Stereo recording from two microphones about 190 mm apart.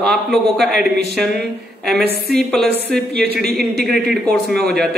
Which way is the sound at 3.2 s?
55° right (ahead or behind).